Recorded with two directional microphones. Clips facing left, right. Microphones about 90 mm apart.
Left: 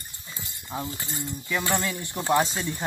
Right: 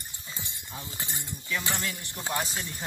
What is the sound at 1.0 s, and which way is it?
Speech, 20° right (ahead or behind).